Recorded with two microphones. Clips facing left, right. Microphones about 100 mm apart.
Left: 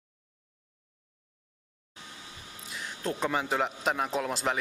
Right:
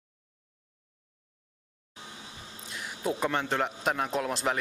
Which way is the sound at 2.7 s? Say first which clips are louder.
Right 2 dB; 5° right (ahead or behind).